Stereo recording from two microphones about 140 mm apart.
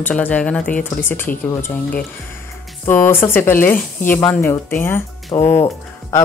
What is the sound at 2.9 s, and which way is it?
A woman's voice, 15° left (ahead or behind).